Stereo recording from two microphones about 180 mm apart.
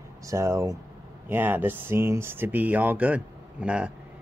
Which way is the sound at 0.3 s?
15° right (ahead or behind).